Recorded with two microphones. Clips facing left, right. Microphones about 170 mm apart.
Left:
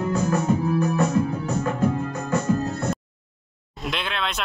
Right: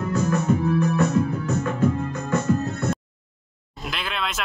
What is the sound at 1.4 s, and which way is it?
Music, 30° left (ahead or behind).